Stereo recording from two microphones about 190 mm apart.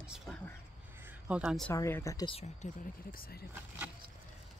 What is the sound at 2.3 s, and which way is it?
Speech, 35° left (ahead or behind).